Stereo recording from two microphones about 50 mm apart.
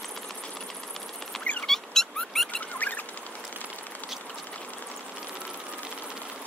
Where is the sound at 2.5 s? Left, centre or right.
Left.